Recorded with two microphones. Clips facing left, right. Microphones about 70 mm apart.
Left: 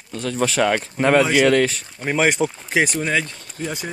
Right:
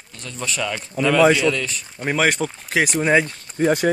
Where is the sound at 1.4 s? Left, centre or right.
Left.